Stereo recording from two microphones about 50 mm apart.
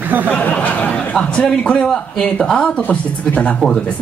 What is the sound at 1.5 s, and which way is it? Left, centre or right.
Speech, centre.